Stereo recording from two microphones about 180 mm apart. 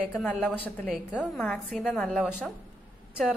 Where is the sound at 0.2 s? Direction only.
5° left (ahead or behind).